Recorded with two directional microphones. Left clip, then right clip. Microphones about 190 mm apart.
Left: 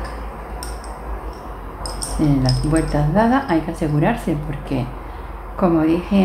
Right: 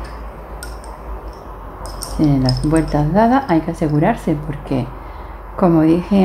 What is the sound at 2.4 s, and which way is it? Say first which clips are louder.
Speech: right 3 dB; 40° right (ahead or behind).